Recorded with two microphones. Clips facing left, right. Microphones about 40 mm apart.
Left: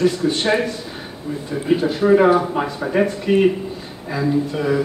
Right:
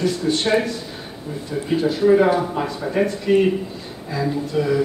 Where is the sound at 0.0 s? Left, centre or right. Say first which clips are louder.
Left 2 dB; centre.